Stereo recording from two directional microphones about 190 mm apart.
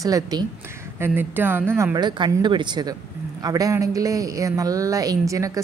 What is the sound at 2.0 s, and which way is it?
Speech, 25° right (ahead or behind).